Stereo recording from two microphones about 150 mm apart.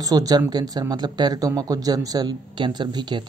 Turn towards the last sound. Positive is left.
turn(degrees=-30)  # may be behind; listen again after turning